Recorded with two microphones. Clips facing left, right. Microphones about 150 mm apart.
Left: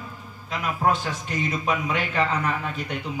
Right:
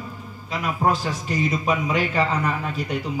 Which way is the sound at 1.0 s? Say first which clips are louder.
Right 4 dB; centre (ahead or behind).